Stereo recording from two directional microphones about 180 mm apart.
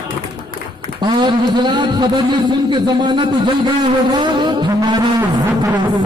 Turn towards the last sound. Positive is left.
turn(degrees=-25)  # may be behind; listen again after turning